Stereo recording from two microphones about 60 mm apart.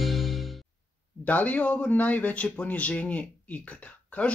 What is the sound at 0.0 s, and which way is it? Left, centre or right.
Music, centre.